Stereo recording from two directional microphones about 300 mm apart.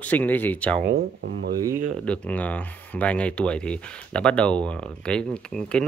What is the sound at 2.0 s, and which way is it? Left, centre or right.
Speech, centre.